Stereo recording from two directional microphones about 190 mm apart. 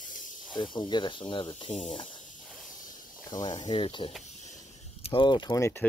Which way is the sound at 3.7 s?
25° left (ahead or behind).